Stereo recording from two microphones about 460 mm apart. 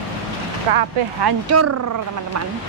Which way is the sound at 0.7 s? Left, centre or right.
Right.